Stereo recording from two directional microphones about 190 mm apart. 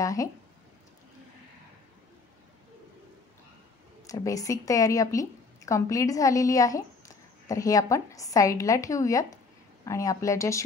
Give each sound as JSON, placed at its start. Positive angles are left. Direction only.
{"t": 0.0, "sound": "a woman's voice", "side_deg": 15}
{"t": 4.1, "sound": "a woman's voice", "side_deg": 15}